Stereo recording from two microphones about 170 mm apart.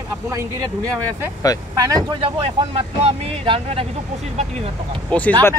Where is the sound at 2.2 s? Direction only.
35° right (ahead or behind).